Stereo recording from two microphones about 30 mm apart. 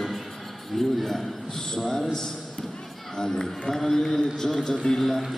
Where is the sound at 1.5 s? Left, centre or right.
Centre.